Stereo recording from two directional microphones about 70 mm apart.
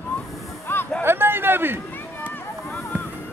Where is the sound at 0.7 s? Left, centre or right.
Left.